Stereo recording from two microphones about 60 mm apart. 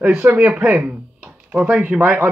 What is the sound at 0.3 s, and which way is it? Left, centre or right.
Speech, right.